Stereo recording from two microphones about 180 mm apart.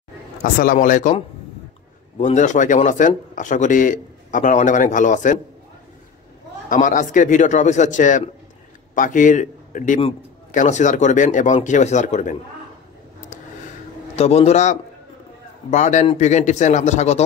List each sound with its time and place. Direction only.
0.4 s speech: 50° left (ahead or behind)
2.1 s speech: 40° left (ahead or behind)
6.7 s a man's voice: 45° left (ahead or behind)
14.1 s speech: 35° left (ahead or behind)